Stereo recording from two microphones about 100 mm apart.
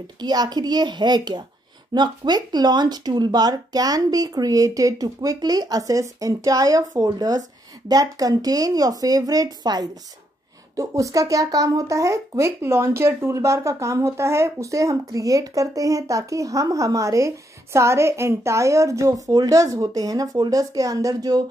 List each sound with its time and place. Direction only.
0.2 s speech: 45° right (ahead or behind)